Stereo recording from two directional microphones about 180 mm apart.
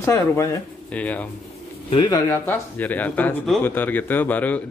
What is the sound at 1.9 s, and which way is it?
Speech, 20° left (ahead or behind).